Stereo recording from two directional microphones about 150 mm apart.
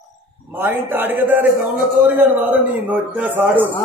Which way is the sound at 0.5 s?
15° right (ahead or behind).